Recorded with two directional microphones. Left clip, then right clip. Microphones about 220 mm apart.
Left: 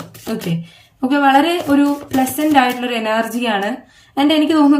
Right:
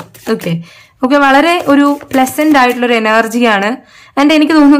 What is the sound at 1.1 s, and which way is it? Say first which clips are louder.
Speech: right 5 dB; 15° right (ahead or behind).